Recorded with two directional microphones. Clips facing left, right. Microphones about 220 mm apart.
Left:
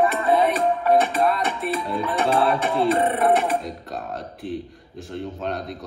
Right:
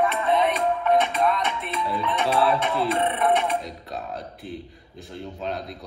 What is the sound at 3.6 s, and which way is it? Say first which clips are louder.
A man's voice: left 2 dB; centre (ahead or behind).